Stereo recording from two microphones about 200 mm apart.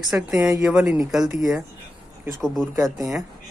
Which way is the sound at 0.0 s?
5° right (ahead or behind).